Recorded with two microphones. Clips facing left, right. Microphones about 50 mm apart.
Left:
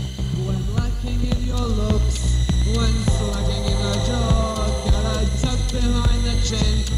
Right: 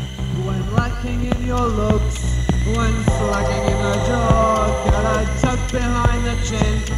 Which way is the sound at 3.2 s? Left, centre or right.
Right.